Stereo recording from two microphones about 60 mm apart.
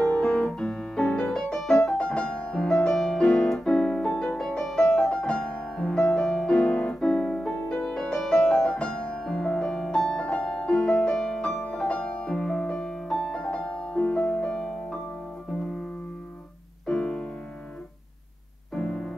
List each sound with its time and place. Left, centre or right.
0.0 s music: centre
1.9 s piano: centre
5.9 s music: centre
6.9 s piano: centre
7.8 s music: centre
16.8 s music: centre
18.8 s music: centre